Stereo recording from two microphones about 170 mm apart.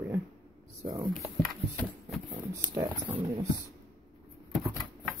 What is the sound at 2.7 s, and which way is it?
Speech, 30° right (ahead or behind).